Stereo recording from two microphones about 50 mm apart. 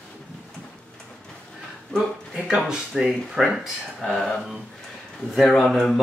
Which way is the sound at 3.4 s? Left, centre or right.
Centre.